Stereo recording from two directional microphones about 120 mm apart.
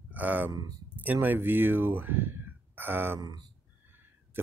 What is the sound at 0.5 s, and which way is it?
Speech, 35° right (ahead or behind).